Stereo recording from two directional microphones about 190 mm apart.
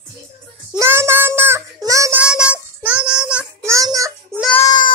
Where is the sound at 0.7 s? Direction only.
15° right (ahead or behind).